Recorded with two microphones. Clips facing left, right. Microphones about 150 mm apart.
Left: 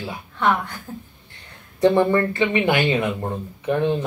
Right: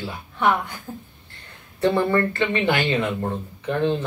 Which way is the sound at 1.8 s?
15° left (ahead or behind).